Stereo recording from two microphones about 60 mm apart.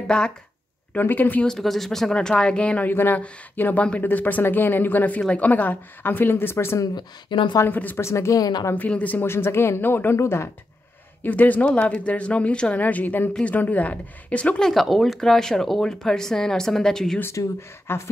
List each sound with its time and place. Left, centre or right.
0.0 s speech: centre
0.9 s speech: left
1.4 s speech: centre
2.9 s speech: left
7.6 s speech: left
8.0 s a woman's voice: left
8.7 s speech: left
9.2 s speech: left
10.1 s speech: left
11.2 s speech: left
14.6 s speech: centre
17.3 s speech: left